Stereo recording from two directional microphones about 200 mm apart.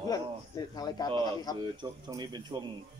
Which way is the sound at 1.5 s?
20° right (ahead or behind).